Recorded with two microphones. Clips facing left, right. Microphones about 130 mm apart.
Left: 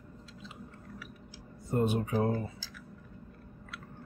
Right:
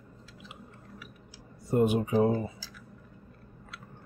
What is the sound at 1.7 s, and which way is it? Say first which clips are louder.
Speech: right 5 dB; 15° right (ahead or behind).